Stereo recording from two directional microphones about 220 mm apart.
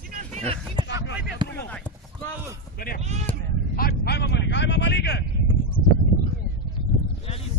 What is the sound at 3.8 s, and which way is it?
Vehicle, 45° left (ahead or behind).